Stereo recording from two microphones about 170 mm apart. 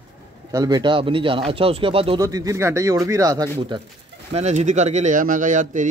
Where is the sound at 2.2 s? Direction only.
20° right (ahead or behind).